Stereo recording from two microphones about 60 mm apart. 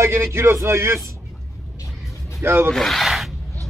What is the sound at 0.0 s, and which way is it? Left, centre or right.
A man's voice, right.